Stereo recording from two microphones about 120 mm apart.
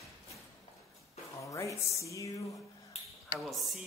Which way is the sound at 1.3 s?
25° left (ahead or behind).